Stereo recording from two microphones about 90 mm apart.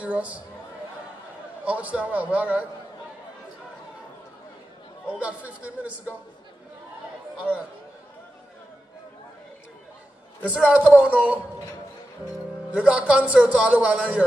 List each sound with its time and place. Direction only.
0.0 s speech: 15° right (ahead or behind)
1.6 s a man's voice: 15° right (ahead or behind)
5.0 s a man's voice: 15° right (ahead or behind)
10.4 s a man's voice: 15° right (ahead or behind)
12.7 s a man's voice: 15° right (ahead or behind)